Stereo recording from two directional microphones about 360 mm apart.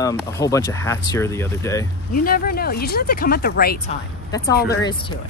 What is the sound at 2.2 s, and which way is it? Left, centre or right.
Speech, left.